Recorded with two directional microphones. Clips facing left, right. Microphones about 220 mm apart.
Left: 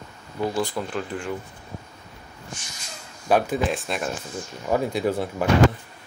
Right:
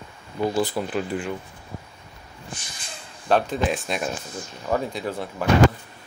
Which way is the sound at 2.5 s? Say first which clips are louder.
Right 1 dB; 35° right (ahead or behind).